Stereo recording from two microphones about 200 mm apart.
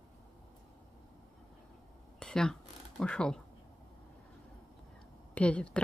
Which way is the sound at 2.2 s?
5° left (ahead or behind).